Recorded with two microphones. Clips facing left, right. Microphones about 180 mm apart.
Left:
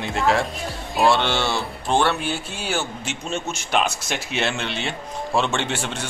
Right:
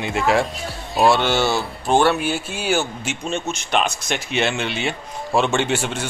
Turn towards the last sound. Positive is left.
turn(degrees=-5)  # may be behind; listen again after turning